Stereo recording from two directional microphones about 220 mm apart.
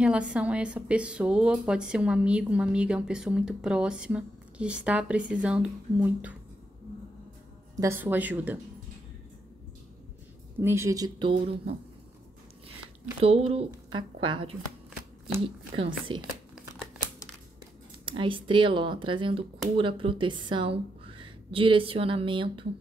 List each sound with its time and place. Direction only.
0.0 s a woman's voice: 5° right (ahead or behind)
7.7 s speech: 15° right (ahead or behind)
10.6 s speech: 10° right (ahead or behind)
13.2 s a woman's voice: 25° right (ahead or behind)
15.7 s a woman's voice: 25° right (ahead or behind)
18.0 s a woman's voice: 25° right (ahead or behind)